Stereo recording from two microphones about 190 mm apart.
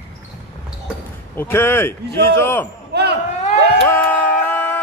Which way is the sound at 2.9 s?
60° right (ahead or behind).